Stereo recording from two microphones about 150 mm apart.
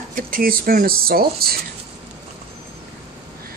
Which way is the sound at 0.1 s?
70° right (ahead or behind).